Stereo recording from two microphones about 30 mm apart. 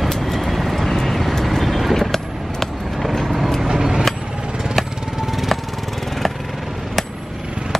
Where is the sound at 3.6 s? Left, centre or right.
Right.